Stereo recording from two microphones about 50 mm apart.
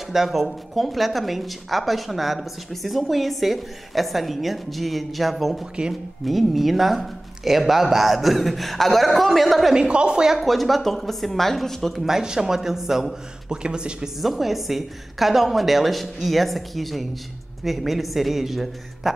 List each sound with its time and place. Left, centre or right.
0.1 s a woman's voice: centre
9.8 s speech: centre
10.4 s a woman's voice: centre
12.2 s speech: centre
13.5 s speech: centre
14.2 s a woman's voice: centre